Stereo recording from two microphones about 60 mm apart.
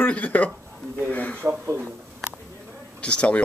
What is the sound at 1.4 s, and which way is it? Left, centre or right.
Speech, right.